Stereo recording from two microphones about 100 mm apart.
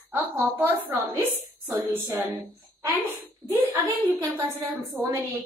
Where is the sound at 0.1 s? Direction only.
20° right (ahead or behind).